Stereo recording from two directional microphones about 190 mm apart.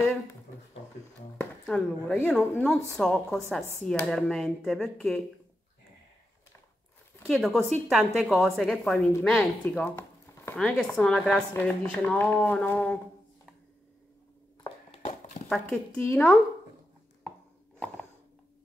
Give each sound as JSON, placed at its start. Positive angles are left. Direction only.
{"t": 1.4, "sound": "speech", "side_deg": 5}
{"t": 7.2, "sound": "speech", "side_deg": 0}
{"t": 14.6, "sound": "a sound", "side_deg": 30}
{"t": 15.4, "sound": "speech", "side_deg": 5}